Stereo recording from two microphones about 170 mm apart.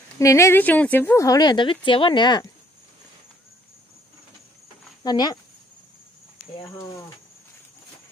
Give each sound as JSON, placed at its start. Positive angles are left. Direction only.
{"t": 0.2, "sound": "speech", "side_deg": 15}
{"t": 5.0, "sound": "speech", "side_deg": 25}